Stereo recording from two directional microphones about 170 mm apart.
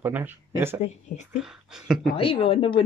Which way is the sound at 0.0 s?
10° right (ahead or behind).